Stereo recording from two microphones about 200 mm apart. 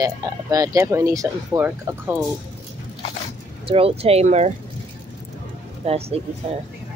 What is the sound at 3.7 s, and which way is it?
Speech, 30° right (ahead or behind).